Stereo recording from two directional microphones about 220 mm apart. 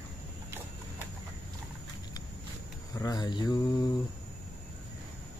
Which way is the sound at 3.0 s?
20° left (ahead or behind).